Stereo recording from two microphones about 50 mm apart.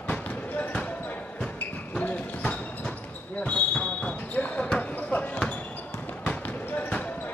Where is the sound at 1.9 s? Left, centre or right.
Left.